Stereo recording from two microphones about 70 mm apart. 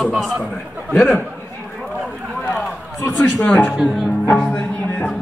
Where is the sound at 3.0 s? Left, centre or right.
Left.